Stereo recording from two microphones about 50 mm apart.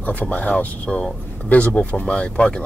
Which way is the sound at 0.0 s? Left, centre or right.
Left.